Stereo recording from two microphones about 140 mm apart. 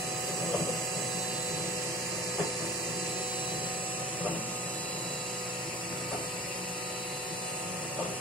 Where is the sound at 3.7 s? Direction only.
10° right (ahead or behind).